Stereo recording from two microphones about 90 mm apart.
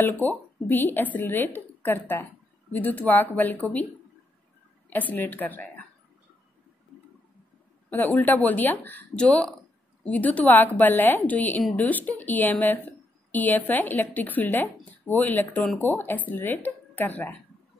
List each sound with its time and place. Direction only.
0.0 s a woman's voice: 20° left (ahead or behind)
4.8 s a woman's voice: 20° left (ahead or behind)
7.9 s a woman's voice: 20° left (ahead or behind)